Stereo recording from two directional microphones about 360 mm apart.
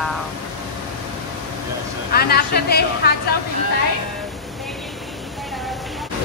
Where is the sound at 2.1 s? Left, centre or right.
Left.